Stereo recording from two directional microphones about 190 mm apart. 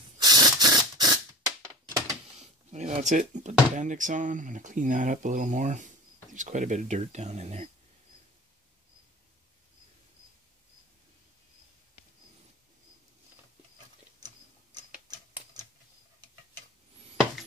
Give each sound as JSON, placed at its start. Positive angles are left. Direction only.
{"t": 0.2, "sound": "spray", "side_deg": -20}
{"t": 2.3, "sound": "speech", "side_deg": -35}